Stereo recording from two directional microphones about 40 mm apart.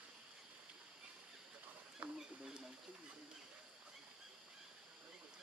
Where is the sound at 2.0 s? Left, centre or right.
Right.